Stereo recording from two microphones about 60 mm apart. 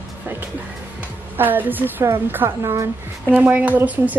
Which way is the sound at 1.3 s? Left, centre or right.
Right.